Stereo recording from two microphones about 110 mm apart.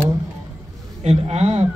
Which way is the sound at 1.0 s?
90° right.